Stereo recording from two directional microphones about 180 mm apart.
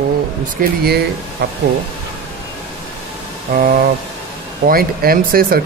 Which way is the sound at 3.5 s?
55° right (ahead or behind).